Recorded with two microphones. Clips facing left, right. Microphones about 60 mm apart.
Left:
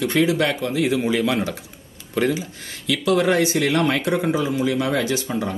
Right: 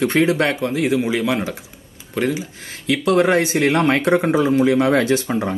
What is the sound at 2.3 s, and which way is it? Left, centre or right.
Speech, right.